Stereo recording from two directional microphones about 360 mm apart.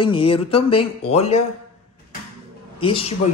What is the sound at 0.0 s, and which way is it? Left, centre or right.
Speech, centre.